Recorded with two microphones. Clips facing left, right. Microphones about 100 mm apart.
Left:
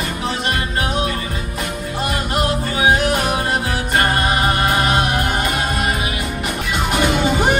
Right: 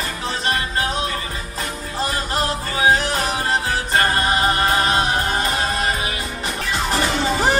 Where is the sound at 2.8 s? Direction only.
30° right (ahead or behind).